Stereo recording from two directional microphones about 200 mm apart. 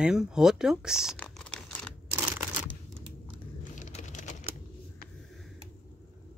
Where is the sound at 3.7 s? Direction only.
40° left (ahead or behind).